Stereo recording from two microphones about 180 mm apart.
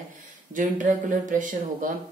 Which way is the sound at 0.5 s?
45° right (ahead or behind).